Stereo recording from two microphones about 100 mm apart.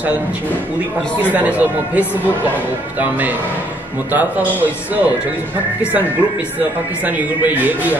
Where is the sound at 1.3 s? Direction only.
15° right (ahead or behind).